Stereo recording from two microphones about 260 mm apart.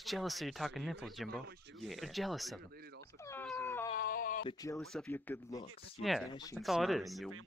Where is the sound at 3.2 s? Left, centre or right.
Centre.